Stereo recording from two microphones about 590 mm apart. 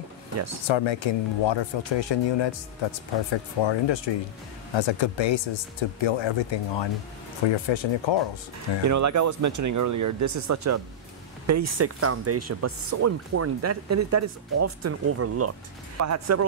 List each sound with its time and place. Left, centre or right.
0.7 s speech: left
8.8 s speech: right